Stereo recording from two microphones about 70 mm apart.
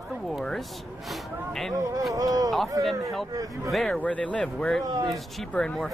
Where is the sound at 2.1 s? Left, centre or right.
Right.